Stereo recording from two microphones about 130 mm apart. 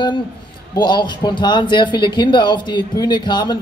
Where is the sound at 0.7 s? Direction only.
35° left (ahead or behind).